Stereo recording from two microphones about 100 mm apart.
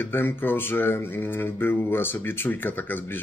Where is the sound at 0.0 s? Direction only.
20° left (ahead or behind).